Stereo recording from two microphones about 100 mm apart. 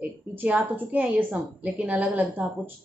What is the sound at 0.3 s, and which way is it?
Speech, 15° right (ahead or behind).